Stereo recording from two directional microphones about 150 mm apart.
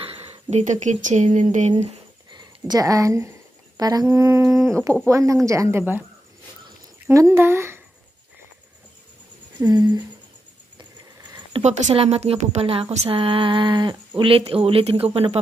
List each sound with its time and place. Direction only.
0.0 s speech: 40° right (ahead or behind)
2.3 s speech: 25° right (ahead or behind)
7.1 s speech: 15° right (ahead or behind)
9.7 s speech: 30° right (ahead or behind)
11.5 s a woman's voice: 45° right (ahead or behind)